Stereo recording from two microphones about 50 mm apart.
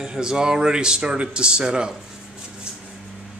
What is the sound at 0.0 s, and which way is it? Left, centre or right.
A man's voice, centre.